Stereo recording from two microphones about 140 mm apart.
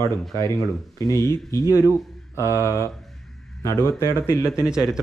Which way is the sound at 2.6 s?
20° left (ahead or behind).